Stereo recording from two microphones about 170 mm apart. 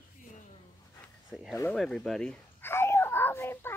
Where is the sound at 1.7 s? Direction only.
Centre (ahead or behind).